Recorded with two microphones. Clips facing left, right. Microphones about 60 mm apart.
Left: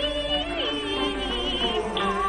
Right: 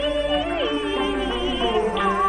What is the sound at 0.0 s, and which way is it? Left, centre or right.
Music, centre.